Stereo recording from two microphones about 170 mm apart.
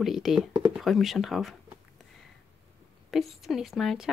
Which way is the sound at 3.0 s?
Centre (ahead or behind).